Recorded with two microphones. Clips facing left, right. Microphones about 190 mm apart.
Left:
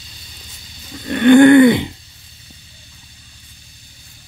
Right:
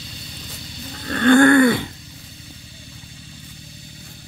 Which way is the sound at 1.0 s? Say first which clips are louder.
Left 5 dB; 15° left (ahead or behind).